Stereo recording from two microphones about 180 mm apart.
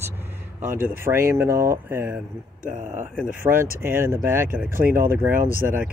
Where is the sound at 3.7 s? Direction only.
15° right (ahead or behind).